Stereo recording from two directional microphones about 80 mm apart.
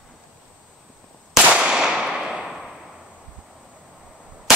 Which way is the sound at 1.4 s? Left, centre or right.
Centre.